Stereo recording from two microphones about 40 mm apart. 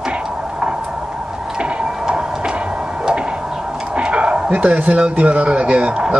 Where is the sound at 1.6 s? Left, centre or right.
Right.